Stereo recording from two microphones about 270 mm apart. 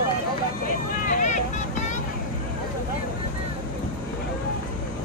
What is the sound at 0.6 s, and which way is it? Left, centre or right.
Vehicle, left.